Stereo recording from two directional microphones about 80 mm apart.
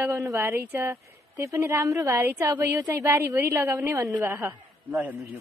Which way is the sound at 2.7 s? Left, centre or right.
Right.